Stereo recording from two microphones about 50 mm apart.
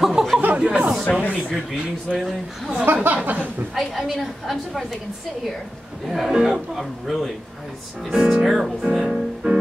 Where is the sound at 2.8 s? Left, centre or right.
Right.